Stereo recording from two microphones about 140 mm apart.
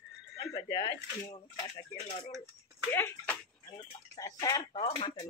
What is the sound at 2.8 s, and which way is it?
Speech, 15° left (ahead or behind).